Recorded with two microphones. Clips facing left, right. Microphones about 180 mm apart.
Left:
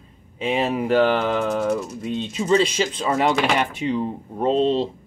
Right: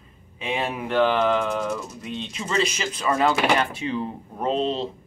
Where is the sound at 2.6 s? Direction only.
30° left (ahead or behind).